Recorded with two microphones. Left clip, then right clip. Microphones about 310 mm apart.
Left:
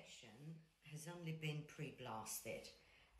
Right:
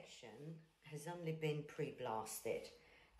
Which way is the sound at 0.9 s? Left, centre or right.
Centre.